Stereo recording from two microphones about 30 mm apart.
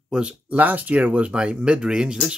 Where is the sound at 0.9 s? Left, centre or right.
Right.